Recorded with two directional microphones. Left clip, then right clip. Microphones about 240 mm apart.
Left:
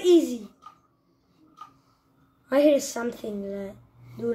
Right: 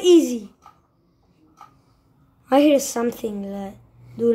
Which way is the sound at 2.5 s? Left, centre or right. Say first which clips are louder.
Right 4 dB; right.